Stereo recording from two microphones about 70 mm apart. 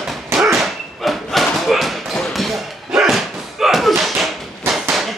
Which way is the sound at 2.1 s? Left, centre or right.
Centre.